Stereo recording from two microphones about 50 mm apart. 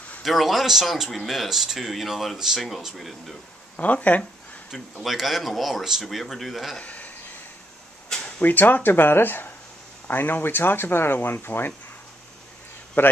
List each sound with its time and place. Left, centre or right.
0.2 s speech: centre
3.7 s speech: left
5.0 s speech: centre
6.8 s speech: left
8.1 s a sound: centre
8.4 s speech: left
13.0 s speech: left